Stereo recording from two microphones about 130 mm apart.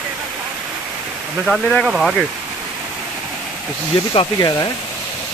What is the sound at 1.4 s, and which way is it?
Speech, centre (ahead or behind).